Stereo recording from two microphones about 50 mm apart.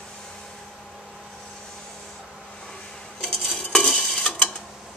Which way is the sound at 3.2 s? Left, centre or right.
Centre.